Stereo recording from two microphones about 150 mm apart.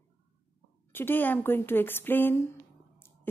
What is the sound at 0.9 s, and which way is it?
A woman's voice, 15° left (ahead or behind).